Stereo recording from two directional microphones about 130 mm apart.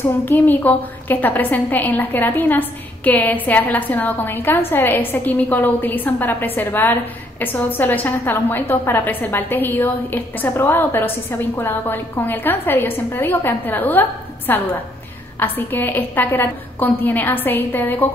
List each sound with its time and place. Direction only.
0.2 s a woman's voice: 15° left (ahead or behind)